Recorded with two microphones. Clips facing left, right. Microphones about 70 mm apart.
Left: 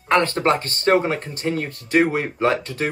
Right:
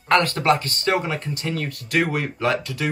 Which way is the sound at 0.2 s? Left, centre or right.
Left.